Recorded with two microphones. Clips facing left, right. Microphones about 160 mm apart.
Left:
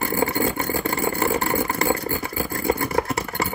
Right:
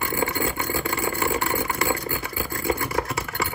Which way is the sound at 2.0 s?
40° left (ahead or behind).